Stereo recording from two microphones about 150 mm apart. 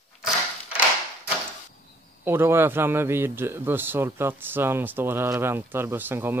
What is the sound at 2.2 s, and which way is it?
A man's voice, 15° right (ahead or behind).